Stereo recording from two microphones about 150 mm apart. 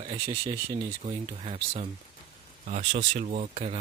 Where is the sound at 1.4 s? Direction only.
40° right (ahead or behind).